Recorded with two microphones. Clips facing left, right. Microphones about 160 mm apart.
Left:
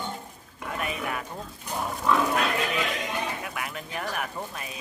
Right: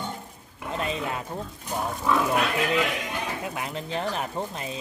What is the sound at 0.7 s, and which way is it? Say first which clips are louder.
Pig: right 2 dB; 25° right (ahead or behind).